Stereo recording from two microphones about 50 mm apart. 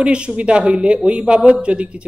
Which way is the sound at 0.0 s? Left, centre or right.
Centre.